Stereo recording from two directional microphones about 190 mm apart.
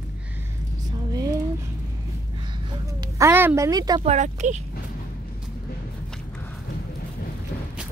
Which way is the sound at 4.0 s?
35° right (ahead or behind).